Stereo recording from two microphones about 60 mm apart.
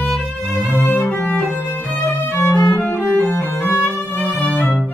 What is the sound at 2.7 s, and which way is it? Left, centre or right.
Cello, left.